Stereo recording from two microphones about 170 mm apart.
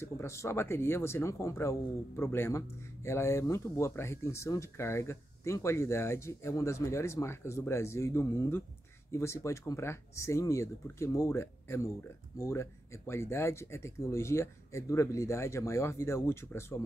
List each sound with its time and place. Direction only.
0.0 s speech: 15° left (ahead or behind)